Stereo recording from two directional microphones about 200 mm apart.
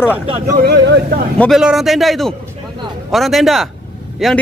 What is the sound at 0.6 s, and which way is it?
Speech, 60° right (ahead or behind).